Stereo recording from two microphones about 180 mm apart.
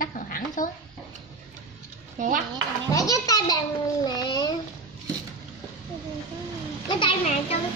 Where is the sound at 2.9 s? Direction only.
20° left (ahead or behind).